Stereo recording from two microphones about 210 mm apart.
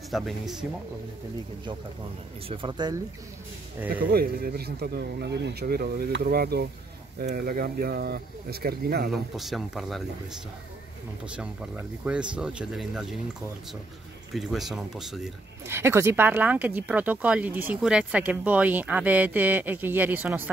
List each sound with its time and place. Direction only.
0.1 s speech: centre (ahead or behind)
2.4 s speech: 25° right (ahead or behind)
4.1 s speech: 45° right (ahead or behind)
9.1 s speech: centre (ahead or behind)
11.3 s speech: 5° right (ahead or behind)
14.3 s speech: centre (ahead or behind)
15.6 s speech: 10° right (ahead or behind)